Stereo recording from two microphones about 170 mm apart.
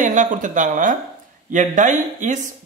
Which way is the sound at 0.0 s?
50° right (ahead or behind).